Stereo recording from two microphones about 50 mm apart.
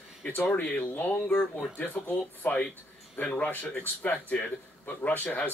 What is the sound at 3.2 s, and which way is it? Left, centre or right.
Speech, centre.